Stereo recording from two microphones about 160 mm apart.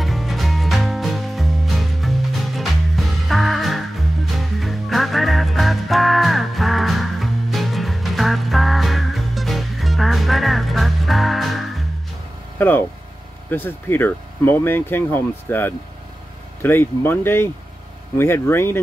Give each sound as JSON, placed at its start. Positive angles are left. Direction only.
{"t": 0.0, "sound": "music", "side_deg": 0}
{"t": 12.5, "sound": "a sound", "side_deg": 10}
{"t": 13.5, "sound": "speech", "side_deg": 10}